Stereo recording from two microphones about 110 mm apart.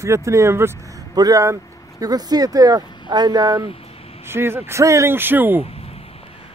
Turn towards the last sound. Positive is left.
turn(degrees=-15)  # may be behind; listen again after turning